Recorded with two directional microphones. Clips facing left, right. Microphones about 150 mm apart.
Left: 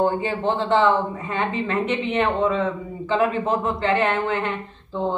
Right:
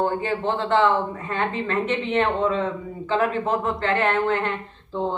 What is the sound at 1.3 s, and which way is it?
Speech, 10° left (ahead or behind).